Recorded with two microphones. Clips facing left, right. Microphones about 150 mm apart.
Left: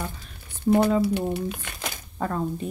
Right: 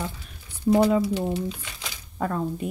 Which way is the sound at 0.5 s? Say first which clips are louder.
Right 1 dB; 55° left (ahead or behind).